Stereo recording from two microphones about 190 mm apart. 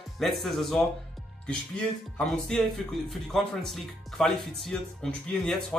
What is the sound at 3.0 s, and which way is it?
Speech, centre (ahead or behind).